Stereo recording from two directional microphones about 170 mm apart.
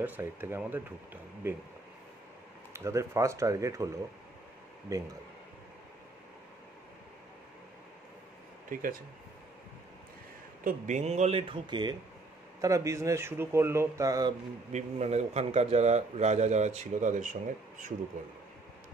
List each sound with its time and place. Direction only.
0.0 s speech: 10° right (ahead or behind)
2.7 s speech: 15° right (ahead or behind)
8.6 s speech: 55° right (ahead or behind)
10.6 s a man's voice: 50° right (ahead or behind); by 14.3 s 20° right (ahead or behind)
14.7 s a man's voice: 40° right (ahead or behind)